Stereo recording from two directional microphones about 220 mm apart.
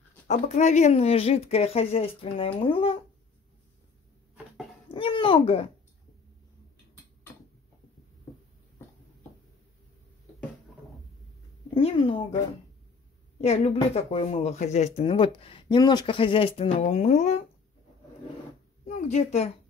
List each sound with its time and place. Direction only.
0.3 s speech: 30° left (ahead or behind)
4.9 s a sound: 20° left (ahead or behind)
11.7 s speech: 25° left (ahead or behind)
13.4 s speech: 30° left (ahead or behind)
18.9 s speech: 30° left (ahead or behind)